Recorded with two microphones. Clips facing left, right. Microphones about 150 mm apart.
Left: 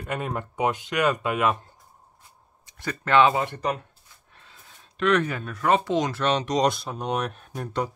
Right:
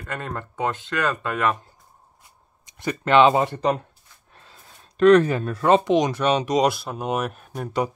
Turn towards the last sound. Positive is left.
turn(degrees=-10)  # may be behind; listen again after turning